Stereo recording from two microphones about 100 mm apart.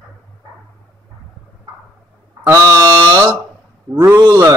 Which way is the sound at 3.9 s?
25° right (ahead or behind).